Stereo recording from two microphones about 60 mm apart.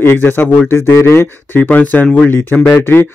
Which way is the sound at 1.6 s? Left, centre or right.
Left.